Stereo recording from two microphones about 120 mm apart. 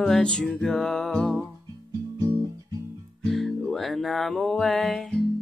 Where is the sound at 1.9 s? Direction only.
25° right (ahead or behind).